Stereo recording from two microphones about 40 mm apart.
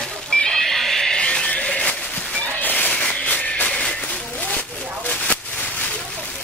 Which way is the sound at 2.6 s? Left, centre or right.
Left.